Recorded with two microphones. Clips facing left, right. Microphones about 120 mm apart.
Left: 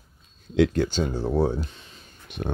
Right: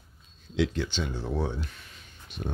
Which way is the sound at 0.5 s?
50° left (ahead or behind).